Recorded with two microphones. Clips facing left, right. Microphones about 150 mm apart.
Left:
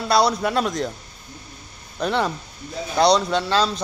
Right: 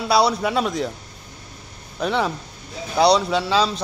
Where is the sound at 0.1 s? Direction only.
5° right (ahead or behind).